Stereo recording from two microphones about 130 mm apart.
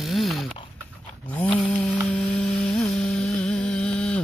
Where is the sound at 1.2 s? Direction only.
10° left (ahead or behind).